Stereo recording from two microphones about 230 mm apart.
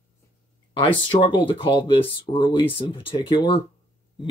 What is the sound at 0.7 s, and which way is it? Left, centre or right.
Speech, left.